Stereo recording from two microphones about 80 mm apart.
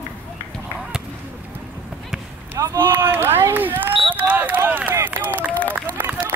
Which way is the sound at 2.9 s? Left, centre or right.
Right.